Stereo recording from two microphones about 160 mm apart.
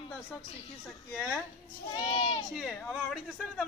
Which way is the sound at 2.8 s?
Centre (ahead or behind).